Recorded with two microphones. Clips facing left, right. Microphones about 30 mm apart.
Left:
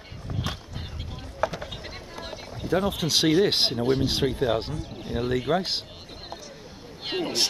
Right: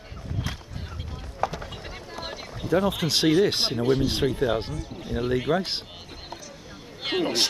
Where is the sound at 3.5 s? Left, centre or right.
Left.